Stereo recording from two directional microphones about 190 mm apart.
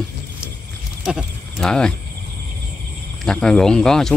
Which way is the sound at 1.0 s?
Centre (ahead or behind).